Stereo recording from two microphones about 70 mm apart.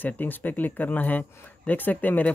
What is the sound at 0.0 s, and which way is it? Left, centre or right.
Speech, left.